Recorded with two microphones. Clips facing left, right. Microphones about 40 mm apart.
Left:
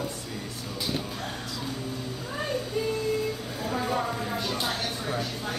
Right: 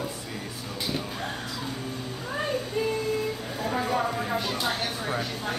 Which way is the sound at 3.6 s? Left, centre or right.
Centre.